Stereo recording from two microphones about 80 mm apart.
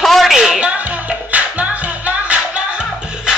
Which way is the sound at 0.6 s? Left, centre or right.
Centre.